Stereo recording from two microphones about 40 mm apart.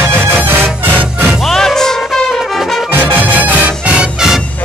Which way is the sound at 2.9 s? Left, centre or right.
Right.